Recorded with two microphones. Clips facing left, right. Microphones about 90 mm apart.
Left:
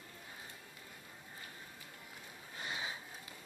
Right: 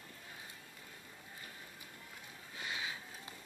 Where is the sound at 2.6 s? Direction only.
30° left (ahead or behind).